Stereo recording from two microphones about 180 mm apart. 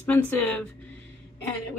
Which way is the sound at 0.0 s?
10° left (ahead or behind).